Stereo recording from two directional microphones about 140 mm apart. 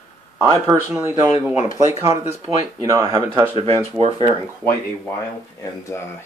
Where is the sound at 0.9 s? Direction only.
15° right (ahead or behind).